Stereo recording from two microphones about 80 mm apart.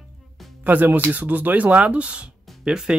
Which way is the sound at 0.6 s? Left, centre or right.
Right.